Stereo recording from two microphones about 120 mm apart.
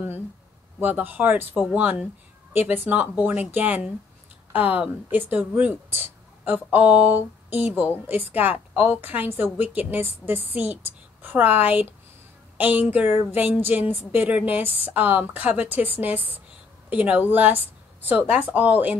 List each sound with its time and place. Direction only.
0.7 s a woman's voice: 15° right (ahead or behind)